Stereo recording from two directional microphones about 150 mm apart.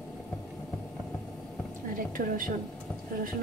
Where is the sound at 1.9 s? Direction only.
65° right (ahead or behind).